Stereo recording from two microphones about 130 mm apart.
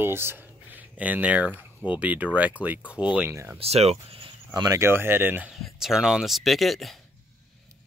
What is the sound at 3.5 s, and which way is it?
Speech, 55° right (ahead or behind).